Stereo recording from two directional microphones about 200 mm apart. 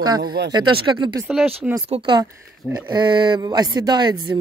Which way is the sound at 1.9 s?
25° right (ahead or behind).